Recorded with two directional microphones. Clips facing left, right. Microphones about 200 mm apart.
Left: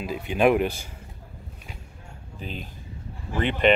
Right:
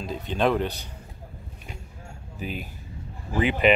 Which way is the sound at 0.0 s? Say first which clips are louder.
Left 3 dB; 10° left (ahead or behind).